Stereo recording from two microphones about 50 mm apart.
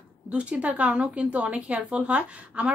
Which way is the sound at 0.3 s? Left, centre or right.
Right.